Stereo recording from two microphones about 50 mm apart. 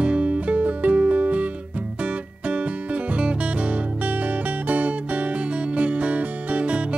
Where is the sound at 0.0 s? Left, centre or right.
Right.